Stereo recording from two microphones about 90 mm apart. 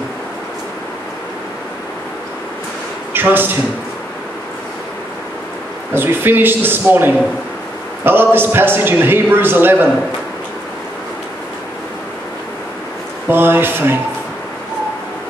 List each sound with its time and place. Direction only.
3.1 s a man's voice: 25° right (ahead or behind)
5.9 s a man's voice: 25° right (ahead or behind)
13.3 s a man's voice: 25° right (ahead or behind)